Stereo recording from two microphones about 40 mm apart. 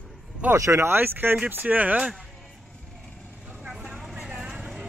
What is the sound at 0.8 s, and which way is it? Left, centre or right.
Speech, right.